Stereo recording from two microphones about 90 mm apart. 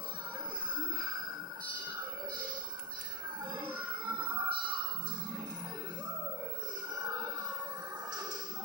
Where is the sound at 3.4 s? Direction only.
55° right (ahead or behind).